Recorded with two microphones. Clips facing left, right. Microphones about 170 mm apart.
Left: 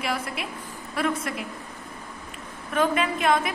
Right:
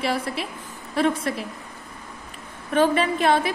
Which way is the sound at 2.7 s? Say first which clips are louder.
Right 4 dB; 30° right (ahead or behind).